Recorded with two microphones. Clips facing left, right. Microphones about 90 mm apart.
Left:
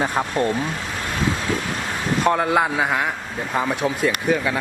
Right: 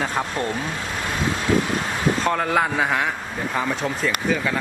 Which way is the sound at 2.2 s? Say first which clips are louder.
Left 5 dB; 10° left (ahead or behind).